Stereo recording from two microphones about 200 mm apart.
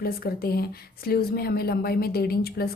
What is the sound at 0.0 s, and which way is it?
Speech, 50° left (ahead or behind).